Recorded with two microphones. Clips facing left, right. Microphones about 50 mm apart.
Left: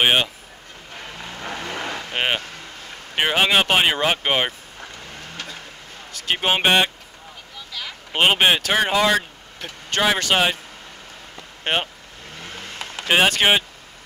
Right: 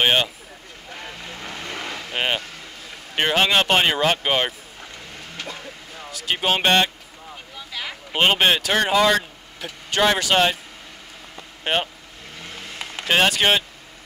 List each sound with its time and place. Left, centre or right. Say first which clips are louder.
0.0 s speech: left 1 dB; centre
1.1 s vehicle: left 6 dB; centre
3.2 s speech: left 1 dB; centre
6.3 s speech: left 1 dB; centre
7.8 s a sound: right 2 dB; centre
8.1 s speech: left 1 dB; centre
11.6 s speech: even; centre
12.4 s vehicle: left 1 dB; centre
13.4 s speech: left 1 dB; centre